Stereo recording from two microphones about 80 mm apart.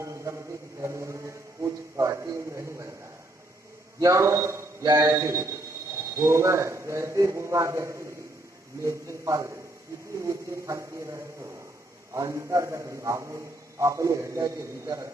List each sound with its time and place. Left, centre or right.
0.0 s mantra: right
4.0 s a man's voice: right
14.4 s a man's voice: right